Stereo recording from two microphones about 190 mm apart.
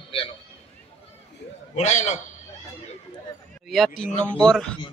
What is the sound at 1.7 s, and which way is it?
Speech, 35° left (ahead or behind).